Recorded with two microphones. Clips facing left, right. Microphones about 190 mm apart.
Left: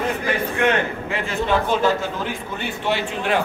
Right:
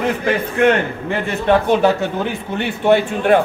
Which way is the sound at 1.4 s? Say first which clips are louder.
Right 6 dB; 60° right (ahead or behind).